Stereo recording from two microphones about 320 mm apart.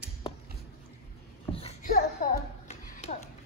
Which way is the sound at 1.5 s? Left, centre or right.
Centre.